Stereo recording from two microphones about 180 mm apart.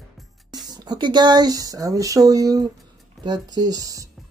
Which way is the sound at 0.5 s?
25° right (ahead or behind).